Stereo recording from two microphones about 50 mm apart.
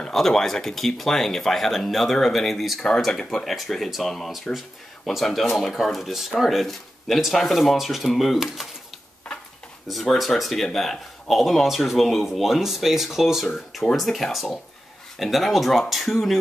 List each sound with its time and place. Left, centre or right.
0.1 s speech: centre
9.3 s a sound: centre
9.8 s speech: centre